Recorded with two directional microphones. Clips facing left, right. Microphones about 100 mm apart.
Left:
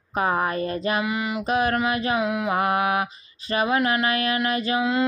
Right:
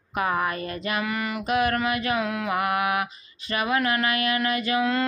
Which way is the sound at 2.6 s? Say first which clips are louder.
Left 2 dB; 30° left (ahead or behind).